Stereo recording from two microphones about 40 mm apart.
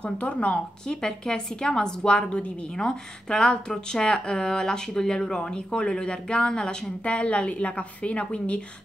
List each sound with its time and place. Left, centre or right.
0.0 s speech: left
0.8 s speech: centre